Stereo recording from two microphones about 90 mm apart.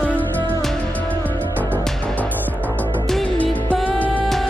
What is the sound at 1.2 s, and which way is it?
Music, 20° left (ahead or behind).